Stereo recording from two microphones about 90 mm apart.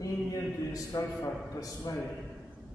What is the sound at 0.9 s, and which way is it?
A man's voice, 50° left (ahead or behind).